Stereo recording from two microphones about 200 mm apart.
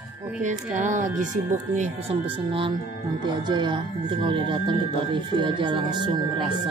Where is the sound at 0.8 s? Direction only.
40° right (ahead or behind).